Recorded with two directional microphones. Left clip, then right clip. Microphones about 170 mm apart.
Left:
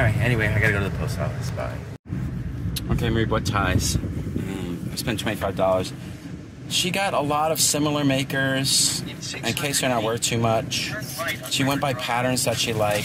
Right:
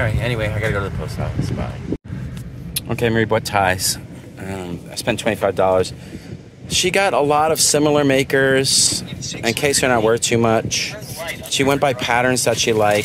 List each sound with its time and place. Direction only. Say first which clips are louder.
0.0 s a sound: right 2 dB; 30° right (ahead or behind)
2.7 s speech: right 7 dB; 90° right
4.9 s speech: right 8 dB; 75° right (ahead or behind)